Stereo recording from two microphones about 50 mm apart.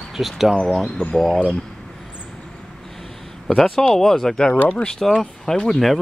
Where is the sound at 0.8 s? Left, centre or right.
Centre.